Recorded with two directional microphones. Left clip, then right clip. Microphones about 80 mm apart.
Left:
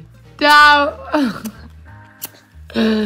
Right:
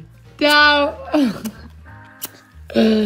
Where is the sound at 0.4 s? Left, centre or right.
Right.